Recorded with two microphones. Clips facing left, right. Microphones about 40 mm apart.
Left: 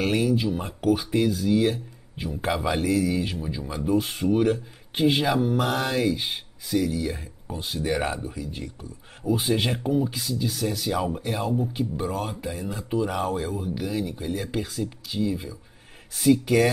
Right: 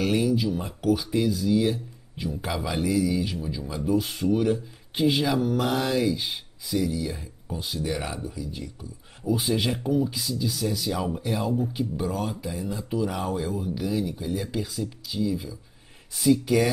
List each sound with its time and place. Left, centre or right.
0.4 s speech: left
7.8 s speech: left
9.2 s speech: centre